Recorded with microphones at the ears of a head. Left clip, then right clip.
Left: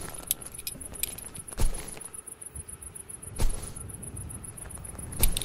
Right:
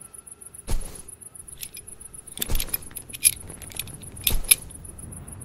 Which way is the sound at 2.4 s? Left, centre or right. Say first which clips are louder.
Right 17 dB; right.